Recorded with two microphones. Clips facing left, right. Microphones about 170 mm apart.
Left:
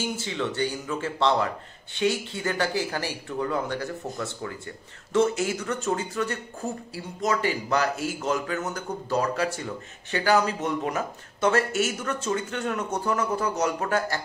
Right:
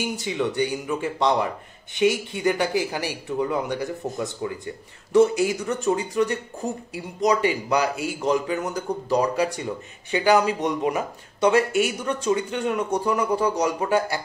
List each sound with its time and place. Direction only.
0.0 s speech: 15° right (ahead or behind)